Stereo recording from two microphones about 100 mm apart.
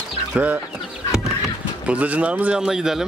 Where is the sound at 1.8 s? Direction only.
15° right (ahead or behind).